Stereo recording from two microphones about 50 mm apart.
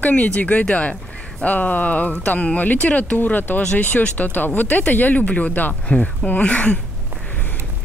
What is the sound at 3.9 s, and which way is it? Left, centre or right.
Speech, left.